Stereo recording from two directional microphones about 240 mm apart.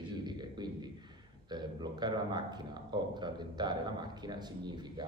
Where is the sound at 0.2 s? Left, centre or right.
Centre.